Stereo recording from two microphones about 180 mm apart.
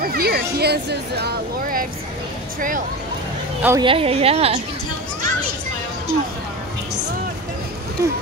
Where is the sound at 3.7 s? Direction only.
30° right (ahead or behind).